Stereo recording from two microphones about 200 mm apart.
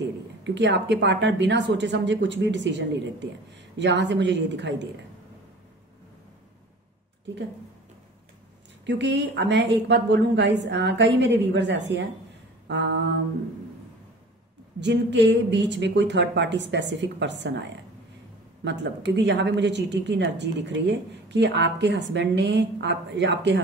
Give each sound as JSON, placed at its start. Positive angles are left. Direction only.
{"t": 0.4, "sound": "a woman's voice", "side_deg": -60}
{"t": 8.8, "sound": "a woman's voice", "side_deg": -60}
{"t": 12.6, "sound": "mantra", "side_deg": -60}
{"t": 14.8, "sound": "a woman's voice", "side_deg": -60}